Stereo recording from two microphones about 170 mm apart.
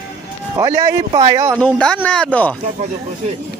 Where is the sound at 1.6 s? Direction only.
5° left (ahead or behind).